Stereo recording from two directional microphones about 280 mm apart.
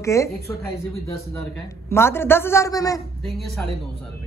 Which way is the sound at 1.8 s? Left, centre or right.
Centre.